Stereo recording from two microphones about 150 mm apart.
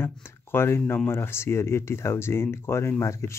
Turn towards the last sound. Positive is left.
turn(degrees=20)  # may be behind; listen again after turning